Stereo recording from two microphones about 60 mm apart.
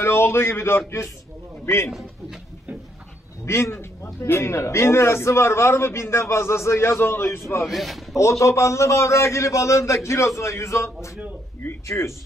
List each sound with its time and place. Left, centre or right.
0.0 s a man's voice: left
3.4 s a man's voice: left
7.2 s a man's voice: left
7.6 s speech: centre
8.2 s a man's voice: left
11.9 s speech: left